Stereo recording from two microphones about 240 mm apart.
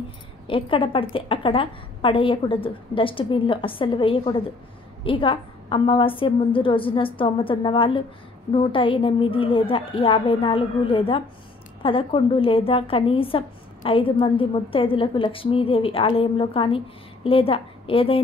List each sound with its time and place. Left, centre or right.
0.5 s a woman's voice: left